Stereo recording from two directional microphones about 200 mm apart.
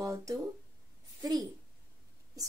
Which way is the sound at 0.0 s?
15° right (ahead or behind).